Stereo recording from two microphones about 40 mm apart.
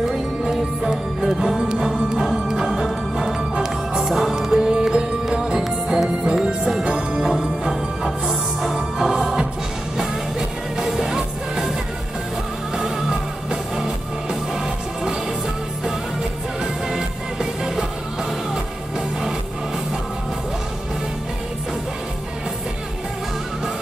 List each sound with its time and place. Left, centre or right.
0.5 s music: centre
6.2 s music: right
10.8 s music: centre
12.7 s music: centre
16.9 s music: centre